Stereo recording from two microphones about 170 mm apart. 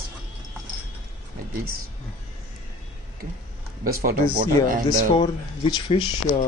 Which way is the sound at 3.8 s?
60° right (ahead or behind).